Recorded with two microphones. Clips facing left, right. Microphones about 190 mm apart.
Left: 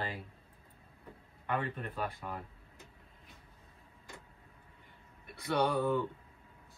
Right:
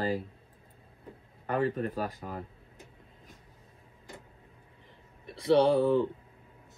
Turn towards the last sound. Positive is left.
turn(degrees=-30)  # may be behind; listen again after turning